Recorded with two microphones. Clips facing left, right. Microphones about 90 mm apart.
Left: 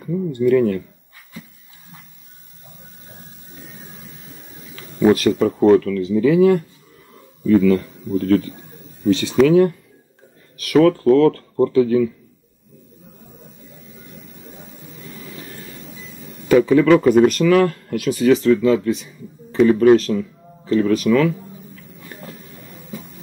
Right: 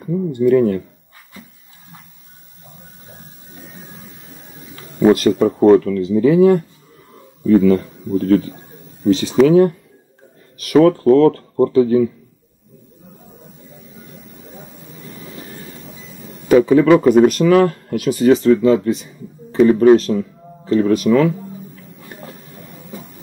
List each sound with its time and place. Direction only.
0.0 s speech: 10° right (ahead or behind)
0.4 s speech: 20° right (ahead or behind)
3.6 s music: centre (ahead or behind)
5.3 s speech: centre (ahead or behind)
5.8 s speech: 25° right (ahead or behind)
7.7 s speech: centre (ahead or behind)
9.5 s speech: 25° right (ahead or behind)
11.0 s speech: 10° right (ahead or behind)
14.1 s a sound: centre (ahead or behind)
16.5 s speech: 15° right (ahead or behind)
17.1 s speech: 5° right (ahead or behind)
17.5 s speech: 20° right (ahead or behind)
22.3 s a sound: centre (ahead or behind)